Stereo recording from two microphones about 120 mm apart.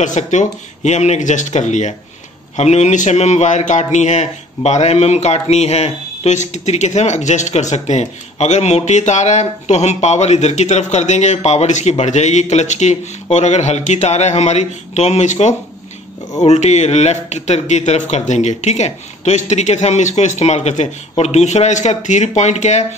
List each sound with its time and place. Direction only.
0.0 s a man's voice: 85° left